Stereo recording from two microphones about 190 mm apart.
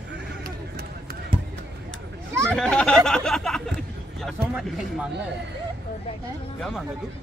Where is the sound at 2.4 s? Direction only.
5° left (ahead or behind).